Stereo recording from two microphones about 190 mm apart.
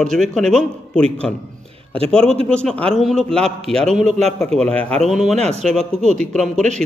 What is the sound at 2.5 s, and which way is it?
Speech, 5° left (ahead or behind).